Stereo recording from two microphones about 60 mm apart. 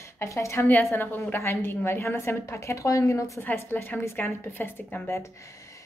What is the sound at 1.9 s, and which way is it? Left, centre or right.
A woman's voice, left.